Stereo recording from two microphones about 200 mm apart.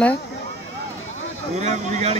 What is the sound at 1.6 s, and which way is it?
Speech, 35° right (ahead or behind).